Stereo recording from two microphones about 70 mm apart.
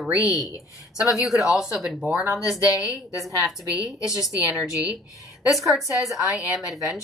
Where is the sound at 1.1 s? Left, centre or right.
Centre.